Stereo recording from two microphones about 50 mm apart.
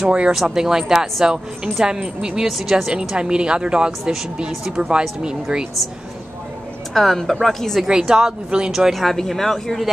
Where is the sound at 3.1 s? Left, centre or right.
Centre.